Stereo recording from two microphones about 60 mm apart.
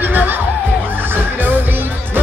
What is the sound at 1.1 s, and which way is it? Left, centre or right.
Music, right.